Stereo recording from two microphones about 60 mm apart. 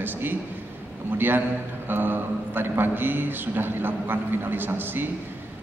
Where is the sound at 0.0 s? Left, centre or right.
Right.